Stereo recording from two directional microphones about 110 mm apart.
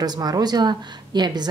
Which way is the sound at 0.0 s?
35° right (ahead or behind).